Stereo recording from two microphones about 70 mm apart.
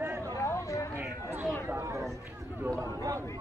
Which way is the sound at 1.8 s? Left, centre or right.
Right.